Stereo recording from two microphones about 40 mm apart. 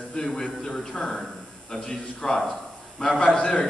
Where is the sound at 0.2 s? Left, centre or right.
Centre.